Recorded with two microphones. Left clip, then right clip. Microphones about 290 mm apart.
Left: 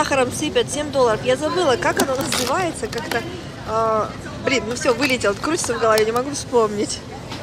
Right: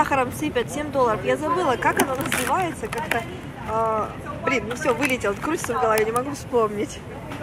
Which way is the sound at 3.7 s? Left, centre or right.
Centre.